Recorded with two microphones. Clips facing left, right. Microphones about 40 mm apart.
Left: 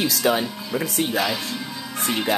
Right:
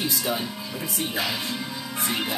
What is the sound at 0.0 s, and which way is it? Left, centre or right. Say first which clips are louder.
Speech: left 6 dB; left.